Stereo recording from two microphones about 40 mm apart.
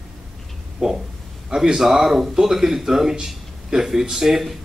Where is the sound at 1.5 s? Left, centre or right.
Centre.